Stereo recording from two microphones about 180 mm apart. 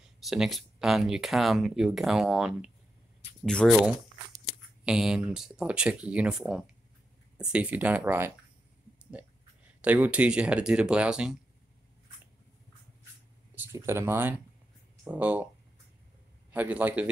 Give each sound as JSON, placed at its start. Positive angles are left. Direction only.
{"t": 0.2, "sound": "speech", "side_deg": 0}
{"t": 9.8, "sound": "speech", "side_deg": -10}
{"t": 13.6, "sound": "speech", "side_deg": -15}
{"t": 16.5, "sound": "speech", "side_deg": -10}